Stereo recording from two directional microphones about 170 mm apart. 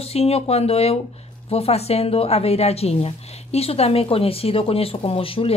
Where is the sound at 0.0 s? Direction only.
35° left (ahead or behind).